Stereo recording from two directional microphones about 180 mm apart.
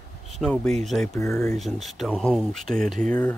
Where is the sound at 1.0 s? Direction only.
15° left (ahead or behind).